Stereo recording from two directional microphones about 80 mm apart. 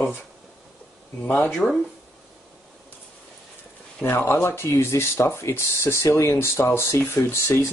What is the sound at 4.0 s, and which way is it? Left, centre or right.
Speech, left.